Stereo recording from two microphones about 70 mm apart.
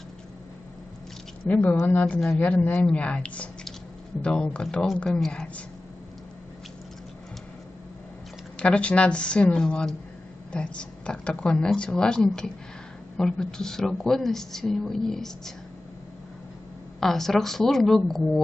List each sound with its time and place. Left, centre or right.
1.5 s a man's voice: left
8.5 s a woman's voice: centre
17.0 s a woman's voice: centre